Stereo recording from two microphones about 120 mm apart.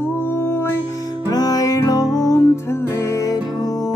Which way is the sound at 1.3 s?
30° left (ahead or behind).